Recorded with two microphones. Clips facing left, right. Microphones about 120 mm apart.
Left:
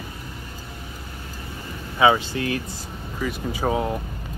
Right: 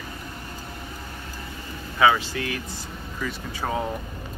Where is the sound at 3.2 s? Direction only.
15° left (ahead or behind).